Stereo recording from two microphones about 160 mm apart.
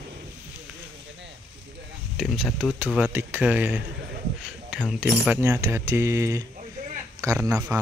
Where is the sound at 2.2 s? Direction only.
Centre (ahead or behind).